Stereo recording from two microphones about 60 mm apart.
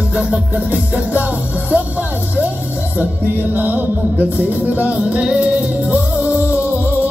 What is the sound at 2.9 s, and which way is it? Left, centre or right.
Music, right.